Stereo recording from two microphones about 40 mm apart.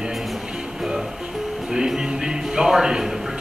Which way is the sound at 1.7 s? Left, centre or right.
Centre.